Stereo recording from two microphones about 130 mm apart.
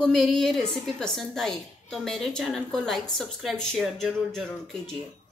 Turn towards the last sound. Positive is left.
turn(degrees=5)  # may be behind; listen again after turning